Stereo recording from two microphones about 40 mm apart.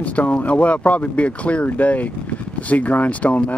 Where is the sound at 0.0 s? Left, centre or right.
Left.